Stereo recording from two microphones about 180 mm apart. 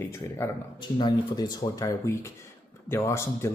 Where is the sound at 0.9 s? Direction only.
25° left (ahead or behind).